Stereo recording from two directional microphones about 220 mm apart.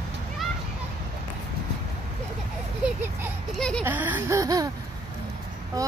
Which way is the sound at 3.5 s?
5° left (ahead or behind).